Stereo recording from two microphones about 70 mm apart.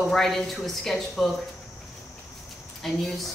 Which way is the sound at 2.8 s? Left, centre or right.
Centre.